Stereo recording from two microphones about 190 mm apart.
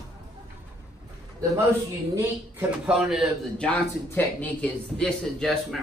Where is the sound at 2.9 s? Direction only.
Centre (ahead or behind).